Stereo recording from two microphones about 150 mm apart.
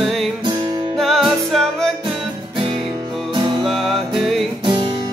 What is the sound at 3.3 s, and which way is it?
Music, 30° right (ahead or behind).